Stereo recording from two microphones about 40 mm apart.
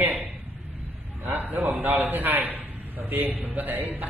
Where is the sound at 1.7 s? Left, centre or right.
Right.